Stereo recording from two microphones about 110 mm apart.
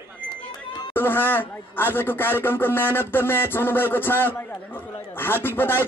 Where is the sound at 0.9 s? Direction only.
20° left (ahead or behind).